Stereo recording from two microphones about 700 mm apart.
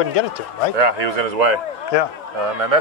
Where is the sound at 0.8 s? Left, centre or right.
Right.